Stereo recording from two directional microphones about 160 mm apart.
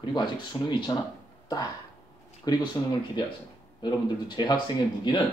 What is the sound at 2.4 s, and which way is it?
Speech, 25° left (ahead or behind).